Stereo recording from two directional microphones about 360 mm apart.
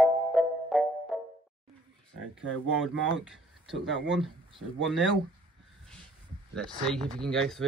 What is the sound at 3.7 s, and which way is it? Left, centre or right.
Speech, right.